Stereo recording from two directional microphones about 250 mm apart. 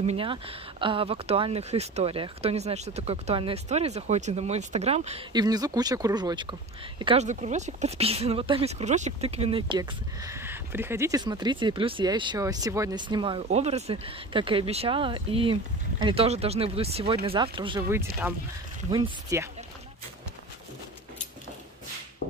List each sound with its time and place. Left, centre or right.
0.0 s speech: right